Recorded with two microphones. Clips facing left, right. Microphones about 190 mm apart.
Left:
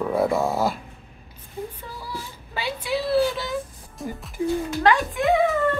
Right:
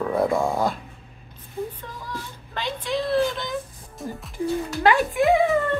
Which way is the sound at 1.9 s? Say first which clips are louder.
Even; 10° left (ahead or behind).